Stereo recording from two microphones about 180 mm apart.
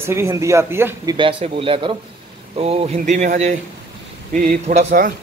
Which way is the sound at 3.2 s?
45° right (ahead or behind).